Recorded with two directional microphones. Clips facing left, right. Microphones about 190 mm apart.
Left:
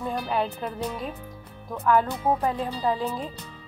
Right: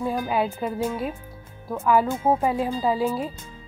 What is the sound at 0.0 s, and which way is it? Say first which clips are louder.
Music: right 3 dB; 10° right (ahead or behind).